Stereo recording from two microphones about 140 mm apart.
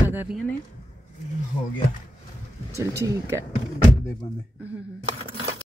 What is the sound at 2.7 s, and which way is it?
Speech, 20° right (ahead or behind).